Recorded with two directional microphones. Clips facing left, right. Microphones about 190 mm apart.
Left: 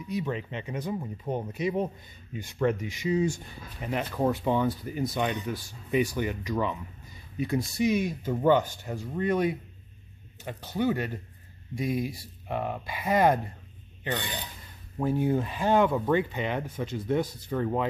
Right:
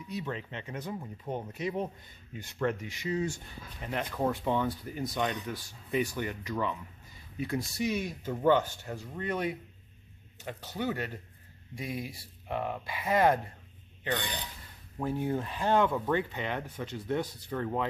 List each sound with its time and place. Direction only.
0.1 s speech: 15° left (ahead or behind)
10.6 s speech: 15° left (ahead or behind)
11.7 s speech: 40° left (ahead or behind)
12.4 s speech: 15° left (ahead or behind)
15.0 s speech: 10° left (ahead or behind)